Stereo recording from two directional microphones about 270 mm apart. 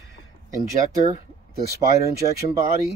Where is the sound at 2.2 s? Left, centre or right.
Right.